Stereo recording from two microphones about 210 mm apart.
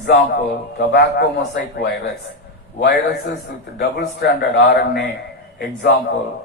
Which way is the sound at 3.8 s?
55° left (ahead or behind).